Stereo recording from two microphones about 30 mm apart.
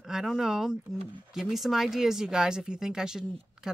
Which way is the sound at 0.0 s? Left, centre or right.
Centre.